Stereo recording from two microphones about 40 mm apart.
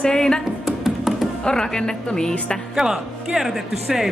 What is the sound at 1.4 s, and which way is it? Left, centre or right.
A woman's voice, centre.